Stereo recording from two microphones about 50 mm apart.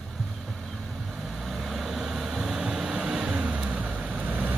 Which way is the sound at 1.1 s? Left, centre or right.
Centre.